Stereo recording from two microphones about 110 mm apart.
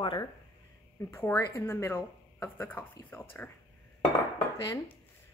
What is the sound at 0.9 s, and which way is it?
Speech, 20° left (ahead or behind).